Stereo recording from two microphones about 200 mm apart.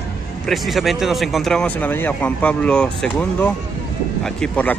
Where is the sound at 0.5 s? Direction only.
Centre (ahead or behind).